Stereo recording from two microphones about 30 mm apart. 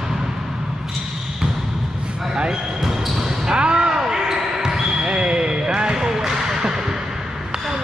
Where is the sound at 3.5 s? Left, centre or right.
Right.